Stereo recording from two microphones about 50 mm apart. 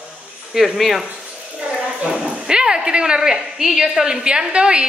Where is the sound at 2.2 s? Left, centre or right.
Centre.